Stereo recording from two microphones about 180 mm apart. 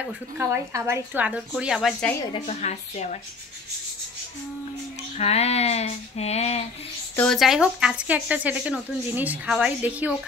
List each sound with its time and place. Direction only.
0.0 s speech: 10° right (ahead or behind)
2.3 s speech: 35° left (ahead or behind)
5.1 s speech: 35° left (ahead or behind)
7.2 s speech: centre (ahead or behind)